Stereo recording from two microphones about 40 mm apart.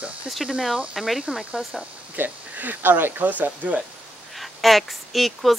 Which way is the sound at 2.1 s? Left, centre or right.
Right.